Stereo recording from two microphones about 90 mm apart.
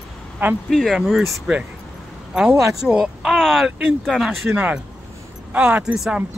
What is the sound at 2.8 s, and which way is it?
Speech, 5° right (ahead or behind).